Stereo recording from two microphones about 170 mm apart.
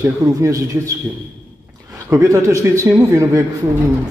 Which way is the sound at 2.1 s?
15° right (ahead or behind).